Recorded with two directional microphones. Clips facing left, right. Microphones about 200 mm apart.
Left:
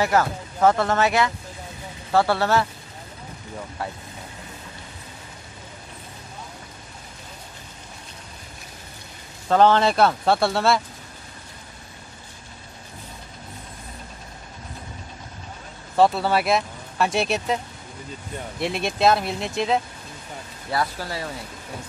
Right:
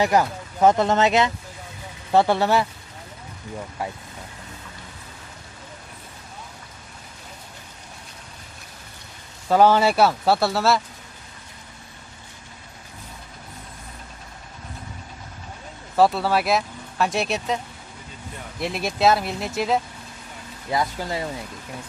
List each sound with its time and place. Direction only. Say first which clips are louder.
0.0 s speech: right 1 dB; 15° right (ahead or behind)
9.5 s speech: right 1 dB; 10° right (ahead or behind)
16.0 s speech: even; centre (ahead or behind)
18.6 s speech: even; centre (ahead or behind)
20.7 s speech: right 2 dB; 20° right (ahead or behind)